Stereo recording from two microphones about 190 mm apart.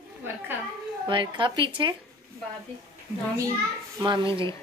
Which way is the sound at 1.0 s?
25° right (ahead or behind).